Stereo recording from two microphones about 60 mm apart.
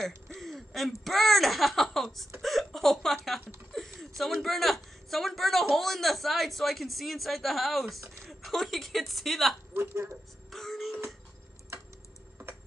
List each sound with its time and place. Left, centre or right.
0.0 s speech: centre
2.4 s hiccup: centre
3.7 s a sound: centre
4.2 s a woman's voice: centre
9.8 s speech: right
10.5 s music: centre